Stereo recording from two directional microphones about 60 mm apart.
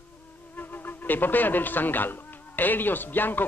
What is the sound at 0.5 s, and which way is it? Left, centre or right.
Speech, left.